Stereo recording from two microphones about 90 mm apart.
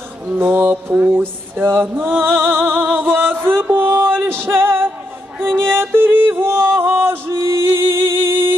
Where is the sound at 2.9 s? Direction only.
20° right (ahead or behind).